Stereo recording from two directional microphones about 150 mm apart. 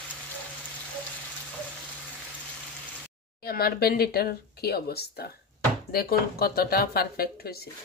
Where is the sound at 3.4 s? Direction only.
85° left.